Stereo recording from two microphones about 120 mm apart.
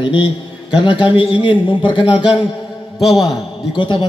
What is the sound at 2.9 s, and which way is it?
Speech, centre (ahead or behind).